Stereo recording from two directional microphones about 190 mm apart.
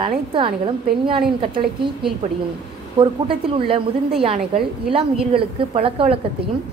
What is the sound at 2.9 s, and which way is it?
A woman's voice, 25° right (ahead or behind).